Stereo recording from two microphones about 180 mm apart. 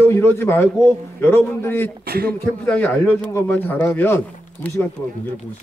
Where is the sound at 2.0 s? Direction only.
55° right (ahead or behind).